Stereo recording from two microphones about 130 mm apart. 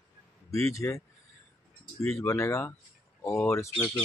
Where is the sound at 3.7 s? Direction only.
35° left (ahead or behind).